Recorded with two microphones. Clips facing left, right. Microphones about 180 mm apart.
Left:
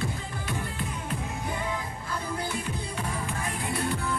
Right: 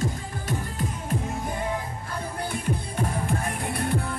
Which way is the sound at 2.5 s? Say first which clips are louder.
Right 3 dB; 50° right (ahead or behind).